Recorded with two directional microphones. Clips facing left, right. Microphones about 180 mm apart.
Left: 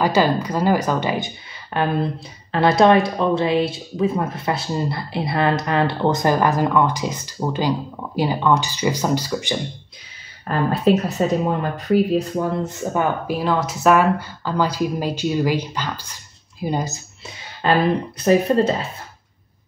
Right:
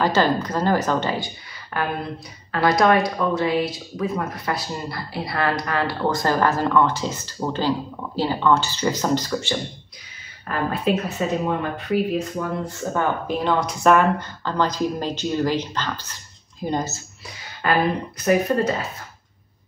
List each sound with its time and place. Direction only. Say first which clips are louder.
0.0 s speech: left 2 dB; 10° left (ahead or behind)
10.7 s speech: left 6 dB; 35° left (ahead or behind)
12.6 s speech: left 2 dB; 15° left (ahead or behind)
17.6 s speech: left 3 dB; 30° left (ahead or behind)